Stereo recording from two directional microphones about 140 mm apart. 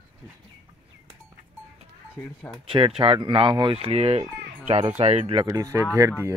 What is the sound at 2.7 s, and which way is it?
Speech, 40° right (ahead or behind).